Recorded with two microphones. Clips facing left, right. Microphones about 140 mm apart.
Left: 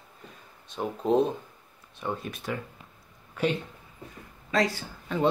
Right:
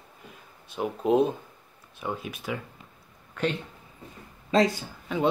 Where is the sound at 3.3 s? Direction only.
10° left (ahead or behind).